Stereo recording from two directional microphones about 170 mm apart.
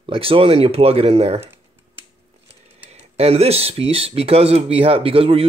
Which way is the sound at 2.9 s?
35° right (ahead or behind).